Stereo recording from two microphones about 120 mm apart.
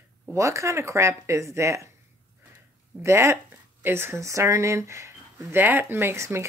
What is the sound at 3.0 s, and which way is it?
Speech, 25° right (ahead or behind).